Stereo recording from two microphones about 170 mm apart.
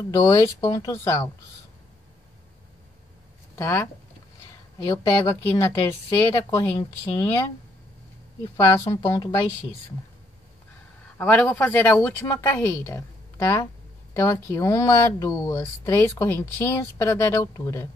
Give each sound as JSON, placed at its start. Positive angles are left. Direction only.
{"t": 0.0, "sound": "speech", "side_deg": 20}
{"t": 3.5, "sound": "speech", "side_deg": 15}
{"t": 8.5, "sound": "speech", "side_deg": 20}
{"t": 11.1, "sound": "speech", "side_deg": 10}